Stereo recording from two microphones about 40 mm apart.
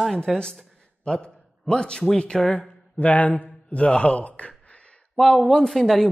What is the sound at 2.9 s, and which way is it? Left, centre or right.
Speech, left.